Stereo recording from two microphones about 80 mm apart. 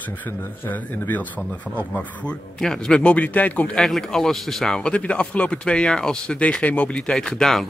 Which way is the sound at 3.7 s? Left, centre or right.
Centre.